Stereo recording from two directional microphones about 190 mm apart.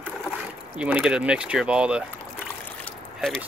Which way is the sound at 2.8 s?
5° left (ahead or behind).